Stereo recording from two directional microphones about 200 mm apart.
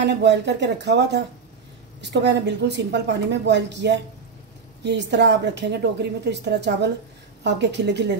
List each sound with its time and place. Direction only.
0.0 s a woman's voice: 60° right (ahead or behind)